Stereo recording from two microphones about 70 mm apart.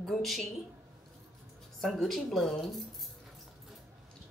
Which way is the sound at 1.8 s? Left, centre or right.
Centre.